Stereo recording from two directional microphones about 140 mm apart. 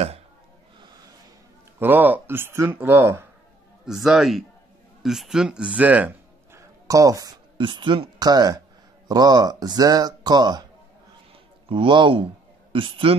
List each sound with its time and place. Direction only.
1.8 s speech: 15° right (ahead or behind)
3.8 s a man's voice: 5° right (ahead or behind)
6.9 s speech: 25° right (ahead or behind)
11.7 s speech: 35° right (ahead or behind)